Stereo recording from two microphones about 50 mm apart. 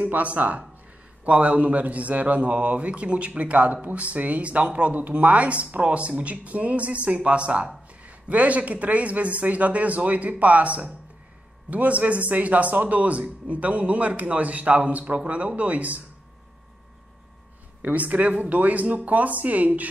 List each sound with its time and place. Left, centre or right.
0.0 s a man's voice: right
17.8 s speech: right